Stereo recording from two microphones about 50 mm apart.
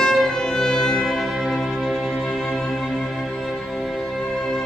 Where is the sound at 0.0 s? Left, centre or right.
Centre.